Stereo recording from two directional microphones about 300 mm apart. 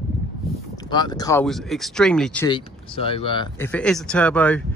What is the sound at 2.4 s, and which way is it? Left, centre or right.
Speech, centre.